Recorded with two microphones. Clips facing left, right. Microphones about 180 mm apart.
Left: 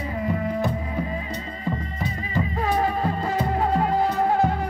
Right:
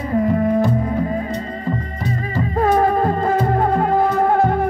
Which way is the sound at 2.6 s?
50° right (ahead or behind).